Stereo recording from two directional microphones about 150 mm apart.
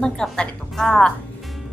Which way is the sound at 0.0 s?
5° left (ahead or behind).